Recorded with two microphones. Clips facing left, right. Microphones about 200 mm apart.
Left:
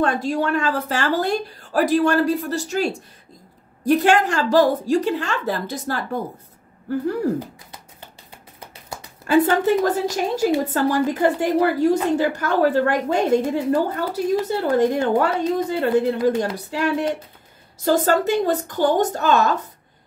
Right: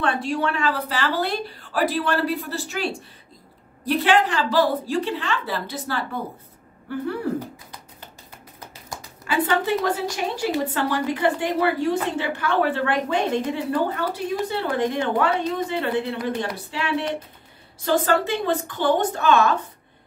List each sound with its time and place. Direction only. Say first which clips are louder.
0.0 s a woman's voice: left 3 dB; 40° left (ahead or behind)
8.3 s music: left 1 dB; 25° left (ahead or behind)
9.3 s a woman's voice: left 6 dB; 45° left (ahead or behind)